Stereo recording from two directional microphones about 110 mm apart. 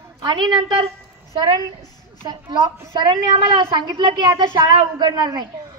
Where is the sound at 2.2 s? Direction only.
40° right (ahead or behind).